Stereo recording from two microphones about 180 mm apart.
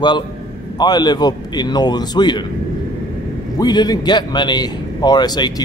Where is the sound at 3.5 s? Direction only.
20° left (ahead or behind).